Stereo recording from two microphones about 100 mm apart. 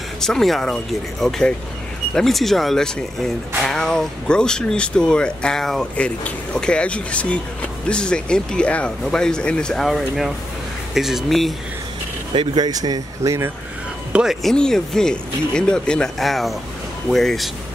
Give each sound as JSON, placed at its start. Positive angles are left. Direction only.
{"t": 0.2, "sound": "speech", "side_deg": 5}
{"t": 2.1, "sound": "speech", "side_deg": 0}
{"t": 12.5, "sound": "speech", "side_deg": -40}
{"t": 14.1, "sound": "speech", "side_deg": -5}
{"t": 14.5, "sound": "speech", "side_deg": 5}